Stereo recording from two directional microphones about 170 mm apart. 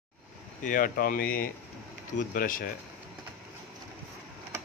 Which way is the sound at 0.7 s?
55° left (ahead or behind).